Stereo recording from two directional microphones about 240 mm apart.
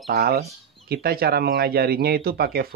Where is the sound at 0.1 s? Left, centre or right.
Right.